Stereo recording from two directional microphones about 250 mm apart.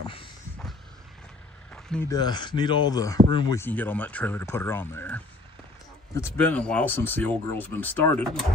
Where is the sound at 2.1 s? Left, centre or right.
Centre.